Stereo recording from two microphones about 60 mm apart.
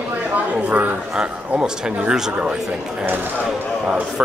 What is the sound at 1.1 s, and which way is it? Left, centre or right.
Speech, centre.